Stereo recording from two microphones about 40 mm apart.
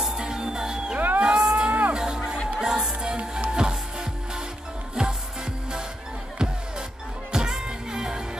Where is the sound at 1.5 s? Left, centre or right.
Right.